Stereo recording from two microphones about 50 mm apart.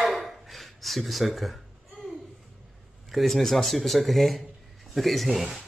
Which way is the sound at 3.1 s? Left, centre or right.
Centre.